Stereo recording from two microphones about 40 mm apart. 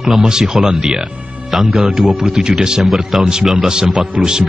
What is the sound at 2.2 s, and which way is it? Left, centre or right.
Speech, centre.